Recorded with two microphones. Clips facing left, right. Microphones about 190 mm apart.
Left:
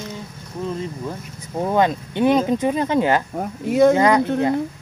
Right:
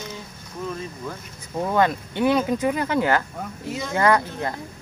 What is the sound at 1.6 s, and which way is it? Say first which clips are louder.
Speech: left 2 dB; 20° left (ahead or behind).